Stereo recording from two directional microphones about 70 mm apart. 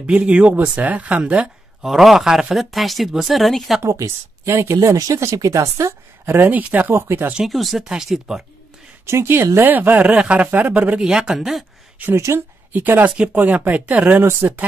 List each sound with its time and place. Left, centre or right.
0.0 s speech: centre
1.9 s speech: centre
3.8 s a woman's voice: right
7.3 s speech: centre
9.0 s a woman's voice: right
11.1 s speech: centre
12.0 s speech: right